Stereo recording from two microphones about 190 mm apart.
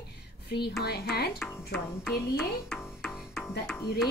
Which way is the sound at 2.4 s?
Centre (ahead or behind).